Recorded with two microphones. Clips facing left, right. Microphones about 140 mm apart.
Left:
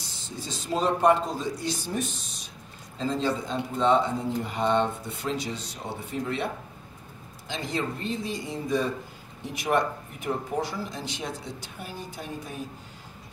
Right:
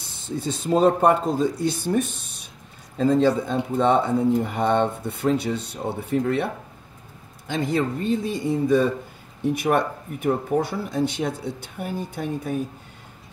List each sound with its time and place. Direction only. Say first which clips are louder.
0.1 s speech: right 10 dB; 55° right (ahead or behind)